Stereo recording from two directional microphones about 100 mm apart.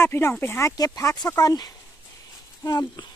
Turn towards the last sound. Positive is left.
turn(degrees=40)  # may be behind; listen again after turning